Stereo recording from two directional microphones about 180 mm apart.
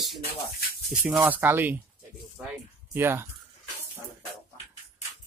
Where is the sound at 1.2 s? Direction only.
10° right (ahead or behind).